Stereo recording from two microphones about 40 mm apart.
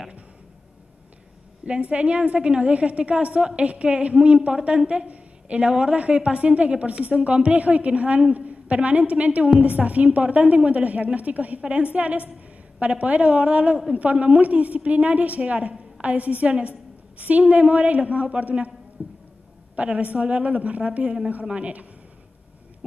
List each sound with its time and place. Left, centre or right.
1.7 s a woman's voice: right
19.0 s music: right
19.7 s a woman's voice: right